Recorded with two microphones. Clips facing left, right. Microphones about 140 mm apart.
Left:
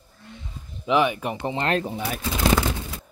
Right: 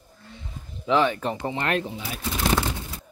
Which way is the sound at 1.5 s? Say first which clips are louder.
Left 5 dB; 30° left (ahead or behind).